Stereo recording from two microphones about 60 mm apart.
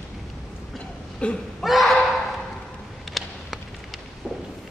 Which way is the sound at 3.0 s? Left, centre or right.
Centre.